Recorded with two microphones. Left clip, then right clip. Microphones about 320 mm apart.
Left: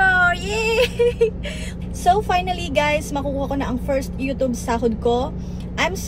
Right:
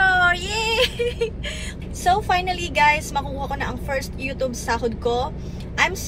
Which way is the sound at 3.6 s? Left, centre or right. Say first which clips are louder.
Left 3 dB; centre.